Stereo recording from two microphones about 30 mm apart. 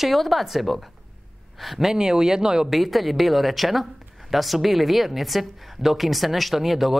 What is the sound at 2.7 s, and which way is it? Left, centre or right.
A woman's voice, centre.